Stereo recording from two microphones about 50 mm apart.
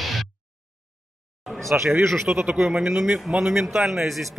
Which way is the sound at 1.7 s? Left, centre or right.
Right.